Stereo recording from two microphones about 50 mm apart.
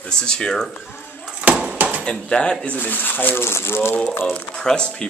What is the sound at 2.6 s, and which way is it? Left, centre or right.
A man's voice, left.